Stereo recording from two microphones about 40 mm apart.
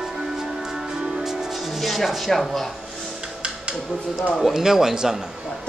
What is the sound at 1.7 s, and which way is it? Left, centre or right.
Speech, centre.